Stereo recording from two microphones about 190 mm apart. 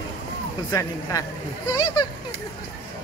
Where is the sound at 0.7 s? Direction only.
15° left (ahead or behind).